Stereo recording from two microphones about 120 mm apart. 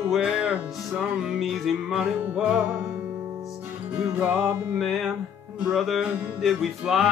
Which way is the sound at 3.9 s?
15° right (ahead or behind).